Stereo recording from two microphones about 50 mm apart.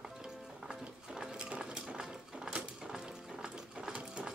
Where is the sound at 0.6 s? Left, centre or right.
Centre.